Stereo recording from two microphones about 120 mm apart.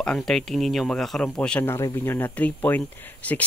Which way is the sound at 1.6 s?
25° left (ahead or behind).